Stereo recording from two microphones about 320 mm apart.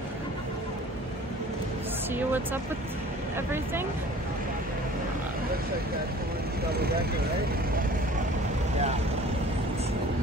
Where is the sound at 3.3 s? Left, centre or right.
Centre.